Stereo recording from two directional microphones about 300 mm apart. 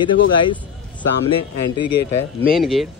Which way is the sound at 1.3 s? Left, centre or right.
Left.